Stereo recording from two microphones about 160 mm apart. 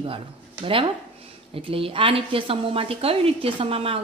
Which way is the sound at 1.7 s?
35° right (ahead or behind).